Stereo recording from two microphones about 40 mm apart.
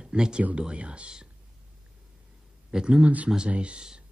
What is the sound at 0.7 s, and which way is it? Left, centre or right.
Speech, right.